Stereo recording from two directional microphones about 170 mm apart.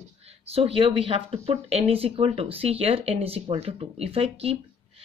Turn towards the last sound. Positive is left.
turn(degrees=-35)  # may be behind; listen again after turning